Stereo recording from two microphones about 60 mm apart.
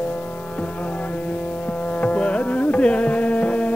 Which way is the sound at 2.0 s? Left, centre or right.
Left.